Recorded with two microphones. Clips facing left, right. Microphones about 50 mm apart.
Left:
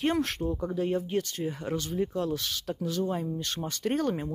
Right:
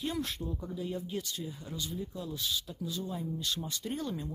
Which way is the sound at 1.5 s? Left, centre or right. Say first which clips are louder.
Left 8 dB; left.